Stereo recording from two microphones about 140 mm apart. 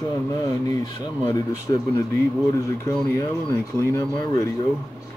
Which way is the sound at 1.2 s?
25° left (ahead or behind).